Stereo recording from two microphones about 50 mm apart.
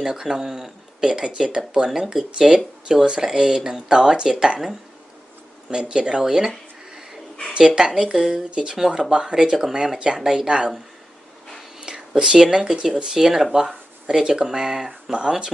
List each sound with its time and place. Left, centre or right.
0.0 s speech: centre
5.7 s speech: centre
7.5 s speech: centre
11.8 s a sound: centre
12.8 s speech: centre